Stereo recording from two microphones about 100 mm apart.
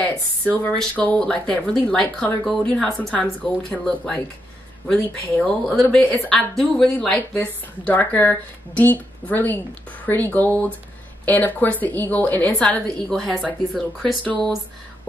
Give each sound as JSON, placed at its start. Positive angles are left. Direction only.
{"t": 0.5, "sound": "a woman's voice", "side_deg": 15}